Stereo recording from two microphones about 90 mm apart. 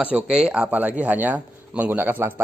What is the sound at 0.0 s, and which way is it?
A man's voice, 15° right (ahead or behind).